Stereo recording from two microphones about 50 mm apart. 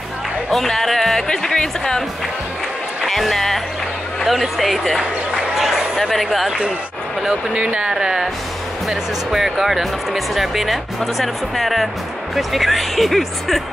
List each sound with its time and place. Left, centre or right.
0.5 s speech: centre
3.1 s speech: centre
7.5 s speech: right; by 13.6 s centre